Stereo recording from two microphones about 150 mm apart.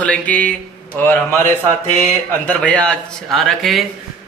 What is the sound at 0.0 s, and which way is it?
Mantra, 10° left (ahead or behind).